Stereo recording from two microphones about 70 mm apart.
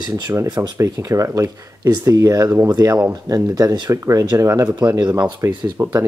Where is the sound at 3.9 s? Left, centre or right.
Right.